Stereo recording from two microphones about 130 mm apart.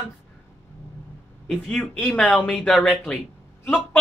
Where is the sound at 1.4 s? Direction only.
Centre (ahead or behind).